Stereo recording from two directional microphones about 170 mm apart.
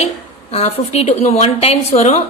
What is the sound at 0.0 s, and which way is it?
A woman's voice, 40° left (ahead or behind).